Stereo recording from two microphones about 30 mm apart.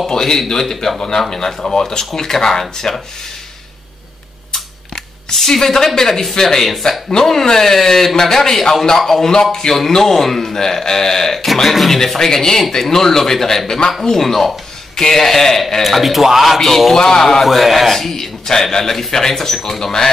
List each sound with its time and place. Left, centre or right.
0.1 s a man's voice: left
2.8 s a man's voice: left
4.5 s scissors: centre
5.9 s a man's voice: centre
11.7 s speech: centre
12.2 s a man's voice: centre
15.8 s speech: centre
16.4 s a man's voice: centre
17.5 s speech: centre
18.2 s a man's voice: centre
19.8 s a man's voice: centre